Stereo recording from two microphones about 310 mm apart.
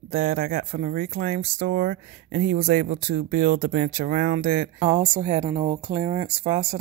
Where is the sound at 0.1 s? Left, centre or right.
Right.